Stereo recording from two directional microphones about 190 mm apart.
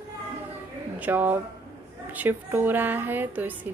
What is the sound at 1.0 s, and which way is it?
Speech, 10° right (ahead or behind).